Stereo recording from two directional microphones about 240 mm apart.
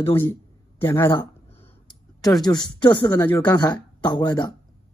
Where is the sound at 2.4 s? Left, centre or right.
Centre.